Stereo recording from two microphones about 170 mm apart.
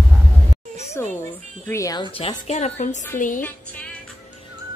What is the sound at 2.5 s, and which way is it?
Speech, 40° left (ahead or behind).